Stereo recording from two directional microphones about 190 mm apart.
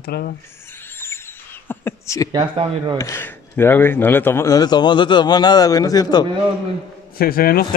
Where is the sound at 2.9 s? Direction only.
15° left (ahead or behind).